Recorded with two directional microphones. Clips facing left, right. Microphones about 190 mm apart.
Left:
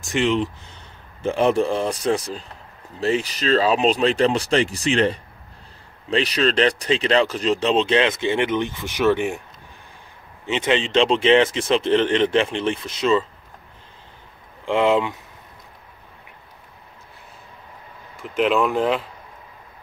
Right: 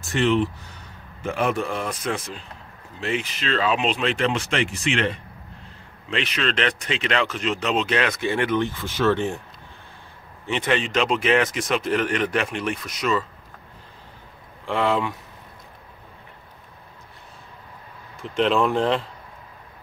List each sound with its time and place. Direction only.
0.1 s speech: 15° left (ahead or behind)
1.2 s speech: 30° left (ahead or behind); by 9.4 s 15° left (ahead or behind)
10.4 s speech: 20° left (ahead or behind)
14.7 s speech: 20° left (ahead or behind)
18.2 s speech: 5° left (ahead or behind)